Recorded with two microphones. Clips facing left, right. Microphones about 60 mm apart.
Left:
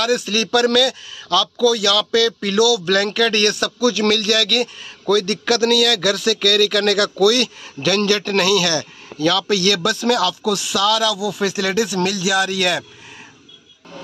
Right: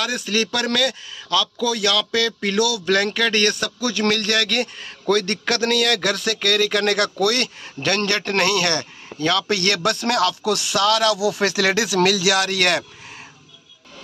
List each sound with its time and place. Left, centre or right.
0.0 s a man's voice: right
2.9 s a man's voice: right
6.5 s speech: right
11.1 s speech: right